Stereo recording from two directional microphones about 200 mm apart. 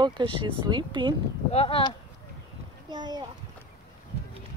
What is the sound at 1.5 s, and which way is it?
Speech, 30° left (ahead or behind).